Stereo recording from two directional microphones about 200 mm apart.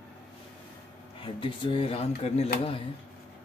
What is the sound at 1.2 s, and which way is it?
Speech, 25° left (ahead or behind).